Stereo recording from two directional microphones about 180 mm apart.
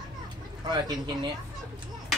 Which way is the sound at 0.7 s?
25° right (ahead or behind).